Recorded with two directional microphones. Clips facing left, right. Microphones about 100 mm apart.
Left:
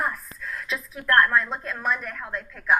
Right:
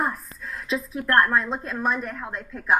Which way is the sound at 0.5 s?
20° right (ahead or behind).